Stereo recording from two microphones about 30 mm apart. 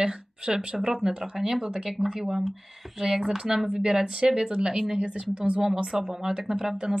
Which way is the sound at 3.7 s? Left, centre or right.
Right.